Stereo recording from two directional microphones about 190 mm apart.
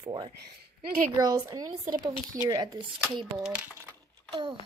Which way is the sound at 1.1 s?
20° right (ahead or behind).